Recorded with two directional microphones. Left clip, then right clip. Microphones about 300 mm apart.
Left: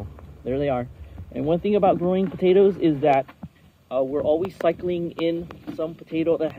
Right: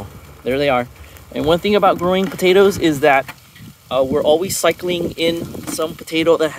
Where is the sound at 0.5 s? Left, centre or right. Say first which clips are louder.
Right 8 dB; centre.